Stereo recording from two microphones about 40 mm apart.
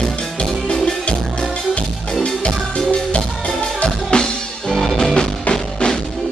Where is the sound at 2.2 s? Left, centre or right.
Left.